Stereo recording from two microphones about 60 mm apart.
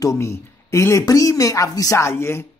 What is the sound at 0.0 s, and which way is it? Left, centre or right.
Speech, left.